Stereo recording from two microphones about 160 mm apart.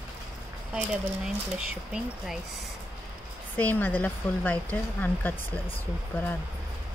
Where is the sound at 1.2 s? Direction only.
5° right (ahead or behind).